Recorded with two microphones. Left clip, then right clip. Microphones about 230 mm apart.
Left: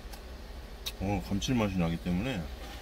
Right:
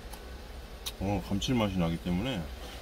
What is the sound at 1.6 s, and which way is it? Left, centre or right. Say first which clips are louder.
Speech: even; centre.